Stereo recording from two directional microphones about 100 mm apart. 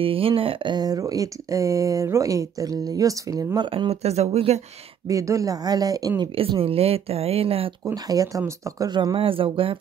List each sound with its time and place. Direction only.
0.0 s speech: 65° right (ahead or behind)
0.7 s speech: 40° right (ahead or behind)
3.7 s speech: 80° right
5.0 s speech: 35° right (ahead or behind)
6.3 s speech: 65° right (ahead or behind)
7.8 s speech: 40° right (ahead or behind)
9.1 s speech: 65° right (ahead or behind)